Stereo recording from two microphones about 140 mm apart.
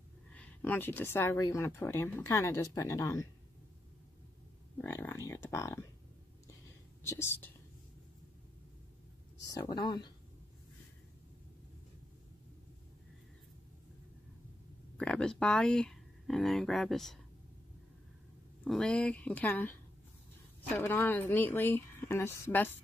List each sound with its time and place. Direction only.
0.3 s speech: 10° left (ahead or behind)
4.7 s speech: 15° left (ahead or behind)
7.0 s speech: 20° left (ahead or behind)
9.5 s speech: 30° left (ahead or behind)
15.0 s speech: 5° left (ahead or behind)
18.6 s speech: 5° left (ahead or behind)
20.7 s speech: 15° left (ahead or behind)